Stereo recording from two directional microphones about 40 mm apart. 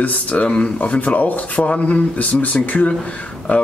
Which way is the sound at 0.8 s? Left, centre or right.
Left.